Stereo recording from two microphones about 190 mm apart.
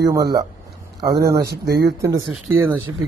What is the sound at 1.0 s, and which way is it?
Speech, 55° right (ahead or behind).